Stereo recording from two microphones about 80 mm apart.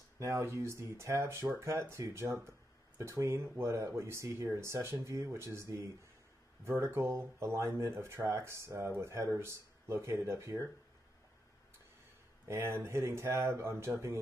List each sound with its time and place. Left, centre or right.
0.2 s speech: right
12.4 s speech: right